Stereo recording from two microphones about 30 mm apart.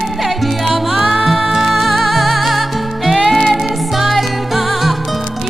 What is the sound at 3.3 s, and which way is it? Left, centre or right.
Music, centre.